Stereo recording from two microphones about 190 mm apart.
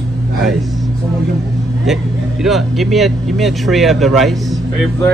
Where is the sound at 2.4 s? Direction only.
Centre (ahead or behind).